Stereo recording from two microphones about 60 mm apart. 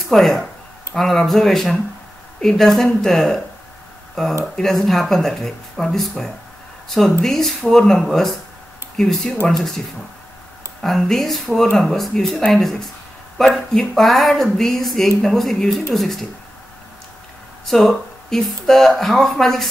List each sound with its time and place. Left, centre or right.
0.1 s speech: centre
10.8 s speech: centre
13.7 s speech: centre
17.6 s speech: centre